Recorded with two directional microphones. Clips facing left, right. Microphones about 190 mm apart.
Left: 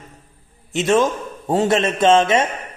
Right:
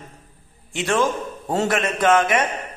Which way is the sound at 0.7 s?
20° left (ahead or behind).